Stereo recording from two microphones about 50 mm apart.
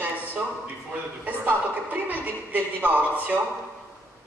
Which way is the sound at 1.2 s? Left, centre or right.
Right.